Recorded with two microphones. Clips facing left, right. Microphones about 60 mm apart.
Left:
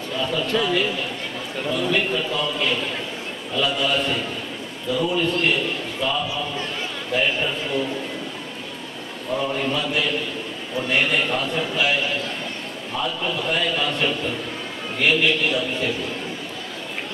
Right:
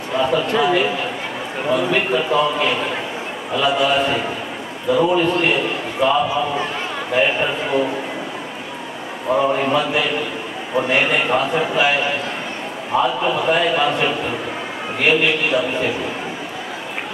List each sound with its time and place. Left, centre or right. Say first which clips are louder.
0.1 s a man's voice: right 6 dB; right
9.4 s a man's voice: right 6 dB; right